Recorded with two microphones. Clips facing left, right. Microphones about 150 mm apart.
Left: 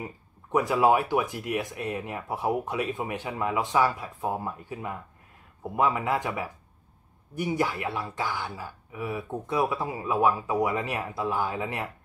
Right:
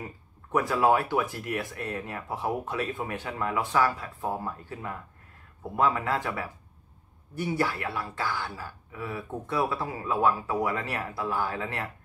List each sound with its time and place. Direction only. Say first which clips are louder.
0.0 s speech: left 2 dB; 15° left (ahead or behind)